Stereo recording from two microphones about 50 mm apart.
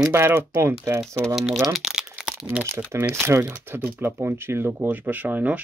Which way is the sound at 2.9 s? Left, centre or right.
Right.